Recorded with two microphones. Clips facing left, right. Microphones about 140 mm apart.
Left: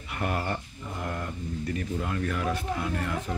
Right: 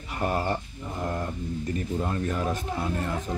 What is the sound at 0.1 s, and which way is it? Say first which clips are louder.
Speech: right 3 dB; 30° right (ahead or behind).